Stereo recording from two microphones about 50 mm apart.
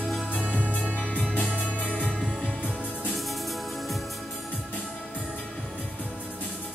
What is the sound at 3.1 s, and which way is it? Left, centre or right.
Music, centre.